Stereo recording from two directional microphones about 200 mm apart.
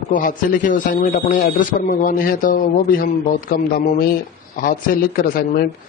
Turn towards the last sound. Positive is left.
turn(degrees=45)  # may be behind; listen again after turning